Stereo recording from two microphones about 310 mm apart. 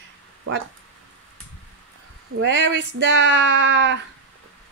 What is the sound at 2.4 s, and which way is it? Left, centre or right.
Speech, right.